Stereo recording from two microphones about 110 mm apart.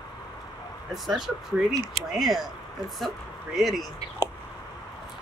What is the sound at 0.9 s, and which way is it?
Speech, 5° right (ahead or behind).